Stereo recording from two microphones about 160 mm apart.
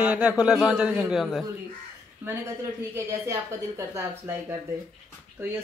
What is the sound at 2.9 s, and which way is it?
Speech, 20° right (ahead or behind).